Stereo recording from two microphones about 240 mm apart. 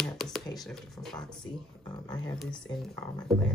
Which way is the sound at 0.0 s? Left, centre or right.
Centre.